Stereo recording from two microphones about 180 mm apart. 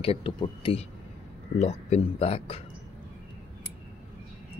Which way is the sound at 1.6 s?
40° left (ahead or behind).